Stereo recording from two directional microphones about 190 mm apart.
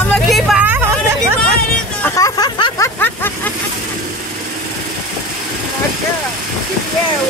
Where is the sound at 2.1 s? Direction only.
20° left (ahead or behind).